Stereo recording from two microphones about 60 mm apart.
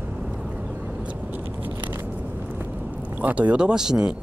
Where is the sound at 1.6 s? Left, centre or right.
Right.